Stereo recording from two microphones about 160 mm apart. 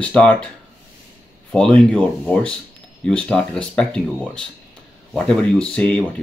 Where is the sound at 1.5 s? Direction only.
5° left (ahead or behind).